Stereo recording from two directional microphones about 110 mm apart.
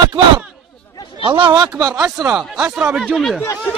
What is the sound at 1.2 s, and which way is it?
Speech, 50° right (ahead or behind).